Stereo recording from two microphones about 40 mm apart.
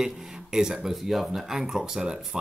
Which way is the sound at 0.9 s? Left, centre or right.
Centre.